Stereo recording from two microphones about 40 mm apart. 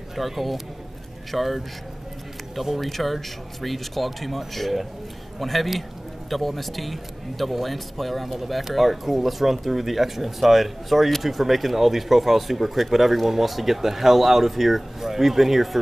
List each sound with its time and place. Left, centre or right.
0.1 s a man's voice: centre